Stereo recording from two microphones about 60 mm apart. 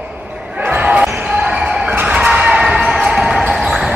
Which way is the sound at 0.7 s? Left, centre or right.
Right.